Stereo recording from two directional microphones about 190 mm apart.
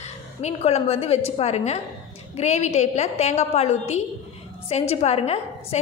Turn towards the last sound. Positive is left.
turn(degrees=35)  # may be behind; listen again after turning